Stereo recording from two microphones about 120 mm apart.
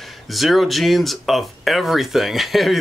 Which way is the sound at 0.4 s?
Centre (ahead or behind).